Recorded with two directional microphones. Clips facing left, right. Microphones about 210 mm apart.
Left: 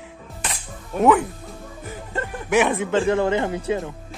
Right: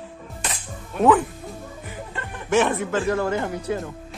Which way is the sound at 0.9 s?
40° left (ahead or behind).